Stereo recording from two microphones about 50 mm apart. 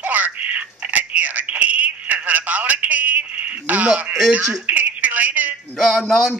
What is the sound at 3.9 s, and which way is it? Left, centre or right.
Speech, right.